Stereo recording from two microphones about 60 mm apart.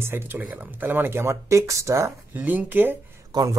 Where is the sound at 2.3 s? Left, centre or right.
Right.